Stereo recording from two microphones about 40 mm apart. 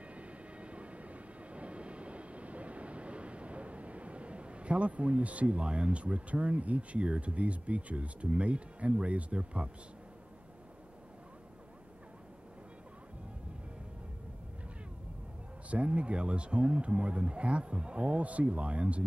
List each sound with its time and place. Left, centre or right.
0.1 s vehicle: right
15.7 s speech: right